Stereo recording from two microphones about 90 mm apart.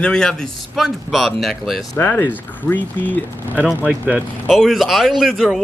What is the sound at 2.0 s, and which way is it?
Speech, 20° left (ahead or behind).